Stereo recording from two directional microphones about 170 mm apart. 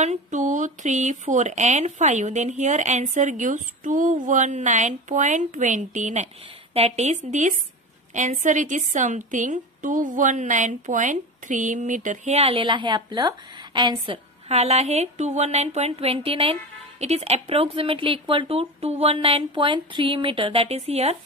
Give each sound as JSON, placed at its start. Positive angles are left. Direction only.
{"t": 0.0, "sound": "a woman's voice", "side_deg": -45}